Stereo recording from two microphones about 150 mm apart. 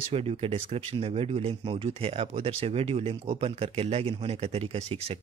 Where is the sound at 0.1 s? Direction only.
40° right (ahead or behind).